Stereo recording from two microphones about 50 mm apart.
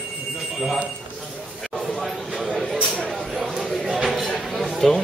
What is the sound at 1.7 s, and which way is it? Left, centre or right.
A man's voice, centre.